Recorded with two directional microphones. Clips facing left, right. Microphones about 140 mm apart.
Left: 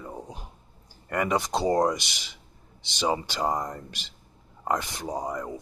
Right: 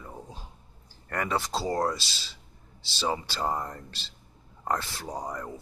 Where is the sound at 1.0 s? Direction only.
10° left (ahead or behind).